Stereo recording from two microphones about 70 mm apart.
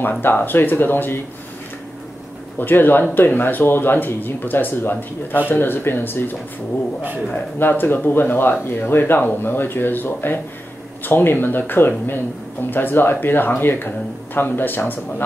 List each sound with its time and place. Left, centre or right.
0.0 s speech: left
2.6 s speech: left